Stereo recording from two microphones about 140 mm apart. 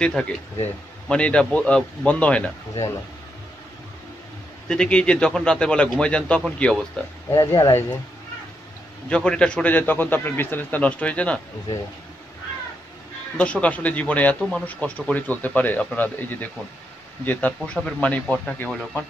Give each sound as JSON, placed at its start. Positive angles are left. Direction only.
{"t": 0.0, "sound": "a man's voice", "side_deg": 5}
{"t": 4.6, "sound": "a man's voice", "side_deg": 5}
{"t": 7.2, "sound": "speech", "side_deg": 20}
{"t": 9.1, "sound": "a man's voice", "side_deg": 5}
{"t": 13.4, "sound": "a man's voice", "side_deg": 10}